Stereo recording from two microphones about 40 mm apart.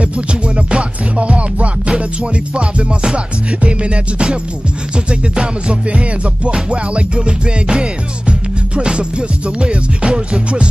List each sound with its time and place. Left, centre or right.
0.0 s music: right